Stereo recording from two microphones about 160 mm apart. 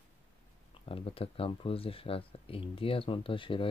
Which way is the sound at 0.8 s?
35° left (ahead or behind).